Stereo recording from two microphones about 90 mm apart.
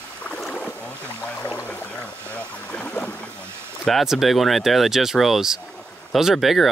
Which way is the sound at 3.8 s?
5° right (ahead or behind).